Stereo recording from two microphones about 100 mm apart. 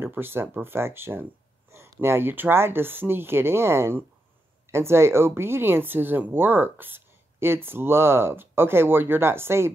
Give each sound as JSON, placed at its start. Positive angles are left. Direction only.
{"t": 0.0, "sound": "speech", "side_deg": -20}